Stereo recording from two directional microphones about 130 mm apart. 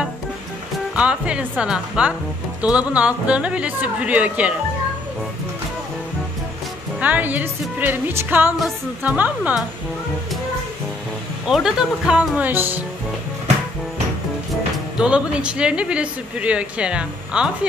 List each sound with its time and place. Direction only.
0.9 s speech: 10° right (ahead or behind)
7.0 s speech: 15° right (ahead or behind)
11.4 s speech: 5° right (ahead or behind)
15.0 s speech: 10° right (ahead or behind)